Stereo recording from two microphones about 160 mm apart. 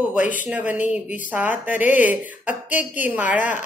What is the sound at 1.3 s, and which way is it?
Speech, 10° right (ahead or behind).